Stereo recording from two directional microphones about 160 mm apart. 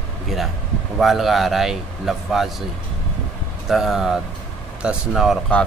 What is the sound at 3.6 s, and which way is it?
Speech, centre (ahead or behind).